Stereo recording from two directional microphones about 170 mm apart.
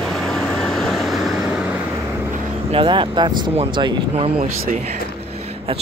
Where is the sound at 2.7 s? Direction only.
30° right (ahead or behind).